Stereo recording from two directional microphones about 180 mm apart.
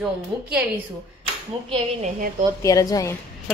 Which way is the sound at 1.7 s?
40° right (ahead or behind).